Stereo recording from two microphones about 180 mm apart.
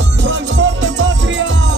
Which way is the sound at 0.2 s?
90° right.